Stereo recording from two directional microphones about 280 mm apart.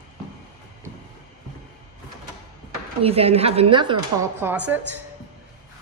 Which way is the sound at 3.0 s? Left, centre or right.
Right.